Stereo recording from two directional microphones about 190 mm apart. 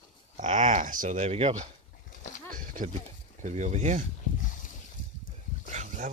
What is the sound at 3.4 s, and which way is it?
Speech, 40° right (ahead or behind).